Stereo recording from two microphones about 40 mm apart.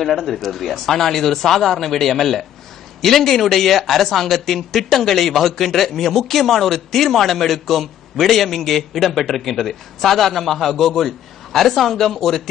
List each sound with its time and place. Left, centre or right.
0.0 s a man's voice: centre